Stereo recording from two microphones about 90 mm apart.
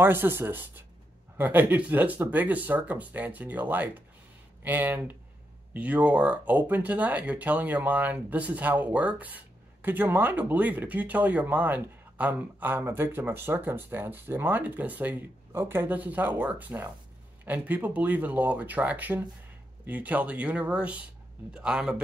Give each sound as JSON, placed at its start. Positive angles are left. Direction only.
{"t": 0.0, "sound": "speech", "side_deg": -25}